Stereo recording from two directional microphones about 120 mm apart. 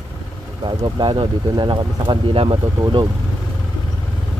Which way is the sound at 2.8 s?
35° right (ahead or behind).